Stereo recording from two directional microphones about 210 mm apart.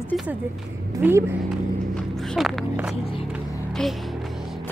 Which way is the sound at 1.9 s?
Centre (ahead or behind).